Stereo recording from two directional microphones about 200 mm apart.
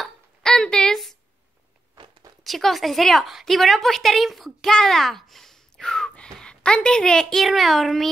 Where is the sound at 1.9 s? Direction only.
25° right (ahead or behind).